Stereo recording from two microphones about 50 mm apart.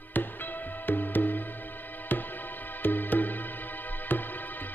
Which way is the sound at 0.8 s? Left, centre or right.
Left.